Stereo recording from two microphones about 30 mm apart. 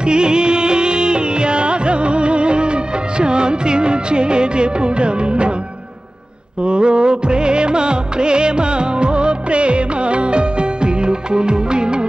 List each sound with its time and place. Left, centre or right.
0.0 s music: right
6.6 s music of bollywood: right